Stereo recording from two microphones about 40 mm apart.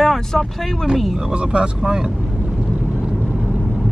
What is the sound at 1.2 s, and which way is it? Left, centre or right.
Speech, right.